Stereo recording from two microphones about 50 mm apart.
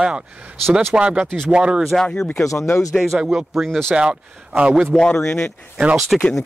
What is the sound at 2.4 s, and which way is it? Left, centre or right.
Speech, left.